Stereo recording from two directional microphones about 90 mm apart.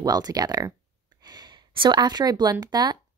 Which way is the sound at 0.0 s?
45° right (ahead or behind).